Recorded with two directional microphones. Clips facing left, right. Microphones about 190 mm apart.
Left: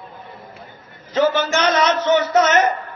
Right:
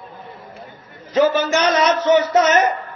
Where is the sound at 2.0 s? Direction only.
35° right (ahead or behind).